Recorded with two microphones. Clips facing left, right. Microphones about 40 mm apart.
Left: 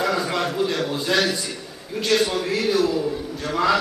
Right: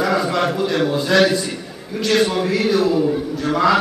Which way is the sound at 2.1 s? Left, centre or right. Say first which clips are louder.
Right 5 dB; right.